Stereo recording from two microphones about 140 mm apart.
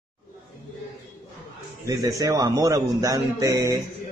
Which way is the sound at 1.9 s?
25° right (ahead or behind).